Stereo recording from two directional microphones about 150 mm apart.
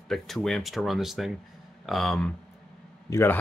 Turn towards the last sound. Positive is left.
turn(degrees=15)  # may be behind; listen again after turning